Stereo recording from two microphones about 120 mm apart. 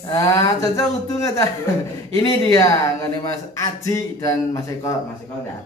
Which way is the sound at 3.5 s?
25° left (ahead or behind).